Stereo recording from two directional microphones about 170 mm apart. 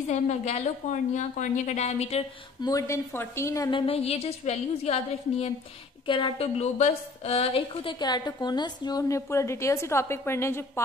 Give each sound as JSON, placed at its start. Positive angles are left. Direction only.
{"t": 0.1, "sound": "a woman's voice", "side_deg": 45}
{"t": 2.6, "sound": "a woman's voice", "side_deg": 20}
{"t": 3.8, "sound": "a woman's voice", "side_deg": 35}